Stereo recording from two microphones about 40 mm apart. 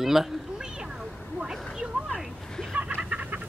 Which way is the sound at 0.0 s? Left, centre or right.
Centre.